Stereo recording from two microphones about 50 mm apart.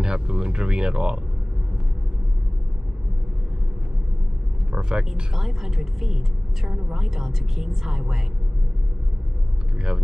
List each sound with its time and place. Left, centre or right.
0.0 s a woman's voice: centre
4.7 s a woman's voice: centre